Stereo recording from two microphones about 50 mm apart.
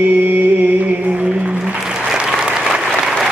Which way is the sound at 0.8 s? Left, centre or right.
Right.